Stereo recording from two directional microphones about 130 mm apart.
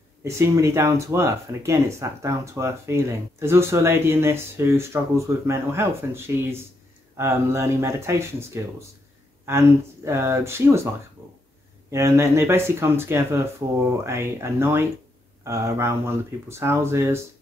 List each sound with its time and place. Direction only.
0.2 s speech: 20° right (ahead or behind)
9.5 s speech: 20° right (ahead or behind)
11.9 s speech: 20° right (ahead or behind)